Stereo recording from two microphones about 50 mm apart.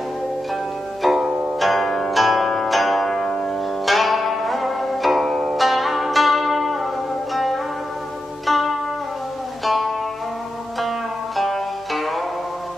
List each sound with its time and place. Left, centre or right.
1.0 s music: centre
1.6 s zither: centre
3.2 s music: centre
3.8 s music: centre
8.5 s zither: centre
9.7 s music: centre